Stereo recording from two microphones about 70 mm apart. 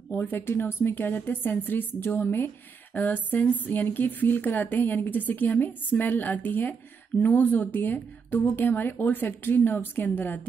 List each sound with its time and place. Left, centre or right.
0.5 s a woman's voice: left